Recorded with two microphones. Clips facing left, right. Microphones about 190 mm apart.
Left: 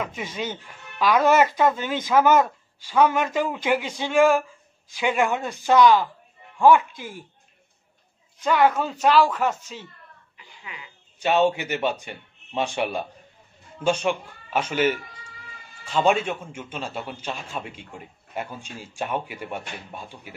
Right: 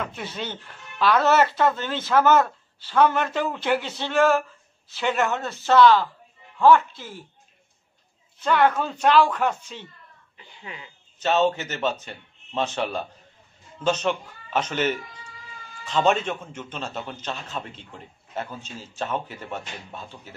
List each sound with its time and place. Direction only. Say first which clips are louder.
0.0 s speech: left 2 dB; 10° left (ahead or behind)
8.4 s speech: left 1 dB; 5° left (ahead or behind)
10.3 s speech: right 3 dB; 30° right (ahead or behind)
11.1 s speech: left 1 dB; 10° left (ahead or behind)